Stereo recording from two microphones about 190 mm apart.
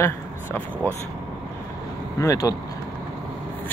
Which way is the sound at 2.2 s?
15° left (ahead or behind).